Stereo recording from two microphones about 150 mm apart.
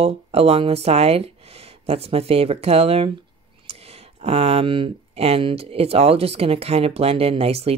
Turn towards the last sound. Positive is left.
turn(degrees=-40)  # may be behind; listen again after turning